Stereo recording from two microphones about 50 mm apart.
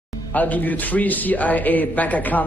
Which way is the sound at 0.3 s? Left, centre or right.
Left.